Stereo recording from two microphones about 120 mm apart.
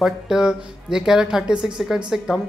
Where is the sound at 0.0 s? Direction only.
5° right (ahead or behind).